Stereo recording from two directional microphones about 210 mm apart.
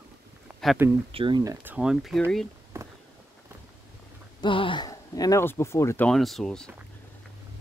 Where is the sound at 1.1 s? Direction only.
25° right (ahead or behind).